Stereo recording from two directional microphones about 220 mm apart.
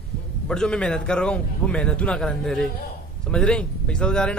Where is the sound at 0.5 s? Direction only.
5° left (ahead or behind).